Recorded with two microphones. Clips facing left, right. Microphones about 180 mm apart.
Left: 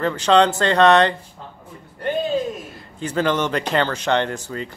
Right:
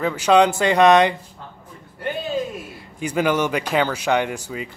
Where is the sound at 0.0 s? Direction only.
10° right (ahead or behind).